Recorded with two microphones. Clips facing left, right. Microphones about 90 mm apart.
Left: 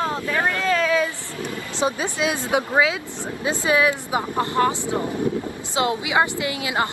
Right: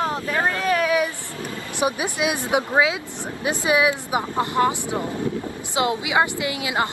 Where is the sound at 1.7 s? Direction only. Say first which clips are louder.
Even; 15° right (ahead or behind).